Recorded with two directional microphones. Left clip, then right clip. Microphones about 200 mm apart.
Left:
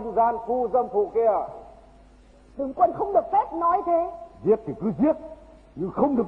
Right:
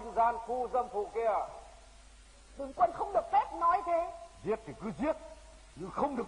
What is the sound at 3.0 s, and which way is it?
A woman's voice, 20° right (ahead or behind).